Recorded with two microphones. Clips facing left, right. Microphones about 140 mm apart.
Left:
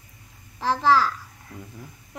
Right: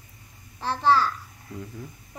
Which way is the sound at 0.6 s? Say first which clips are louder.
Left 2 dB; 90° left.